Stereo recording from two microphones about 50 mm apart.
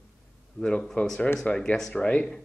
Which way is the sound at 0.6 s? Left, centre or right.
Centre.